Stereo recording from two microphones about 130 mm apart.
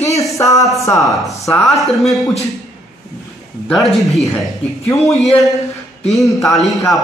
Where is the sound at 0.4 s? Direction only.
25° left (ahead or behind).